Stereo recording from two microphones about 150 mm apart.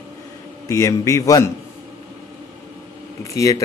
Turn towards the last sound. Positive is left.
turn(degrees=20)  # may be behind; listen again after turning